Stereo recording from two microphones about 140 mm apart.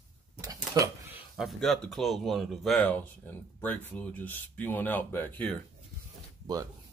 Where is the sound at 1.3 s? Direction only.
Centre (ahead or behind).